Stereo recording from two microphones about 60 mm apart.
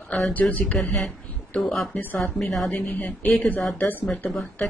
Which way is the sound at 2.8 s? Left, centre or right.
Left.